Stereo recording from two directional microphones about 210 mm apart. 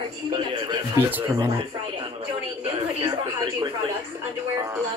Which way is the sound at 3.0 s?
20° right (ahead or behind).